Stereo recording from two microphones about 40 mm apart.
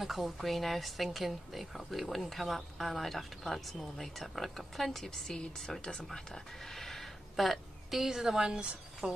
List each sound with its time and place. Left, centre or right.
0.0 s speech: centre; by 9.2 s right